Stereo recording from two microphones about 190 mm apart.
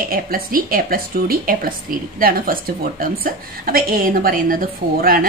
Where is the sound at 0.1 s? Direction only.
50° right (ahead or behind).